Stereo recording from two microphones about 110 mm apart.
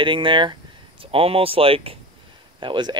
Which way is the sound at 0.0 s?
50° right (ahead or behind).